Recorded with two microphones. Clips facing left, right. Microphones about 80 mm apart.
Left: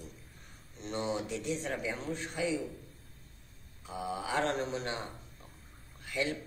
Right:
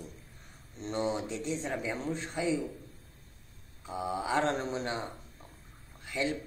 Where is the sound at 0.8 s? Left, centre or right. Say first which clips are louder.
Right 3 dB; right.